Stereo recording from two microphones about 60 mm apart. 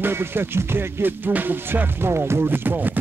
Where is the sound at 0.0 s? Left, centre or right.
Right.